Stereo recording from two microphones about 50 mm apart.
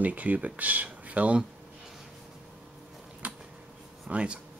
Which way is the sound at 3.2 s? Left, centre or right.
Right.